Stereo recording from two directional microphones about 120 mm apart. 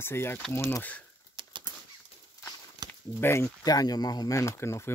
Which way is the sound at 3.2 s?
20° left (ahead or behind).